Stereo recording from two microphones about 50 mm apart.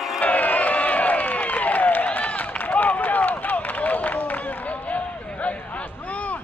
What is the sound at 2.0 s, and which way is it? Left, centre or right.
Run, left.